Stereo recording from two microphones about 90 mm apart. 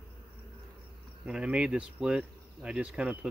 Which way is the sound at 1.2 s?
10° right (ahead or behind).